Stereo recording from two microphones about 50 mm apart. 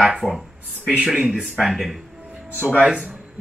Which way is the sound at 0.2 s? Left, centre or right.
Left.